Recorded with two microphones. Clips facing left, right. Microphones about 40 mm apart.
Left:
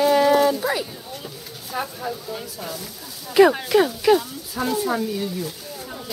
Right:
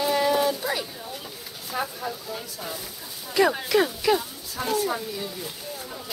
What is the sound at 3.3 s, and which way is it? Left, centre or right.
Speech, centre.